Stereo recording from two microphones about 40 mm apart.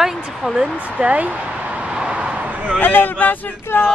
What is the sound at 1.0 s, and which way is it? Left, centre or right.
Speech, right.